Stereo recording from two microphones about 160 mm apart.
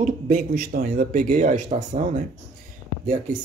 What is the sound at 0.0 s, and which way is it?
Speech, 65° right (ahead or behind).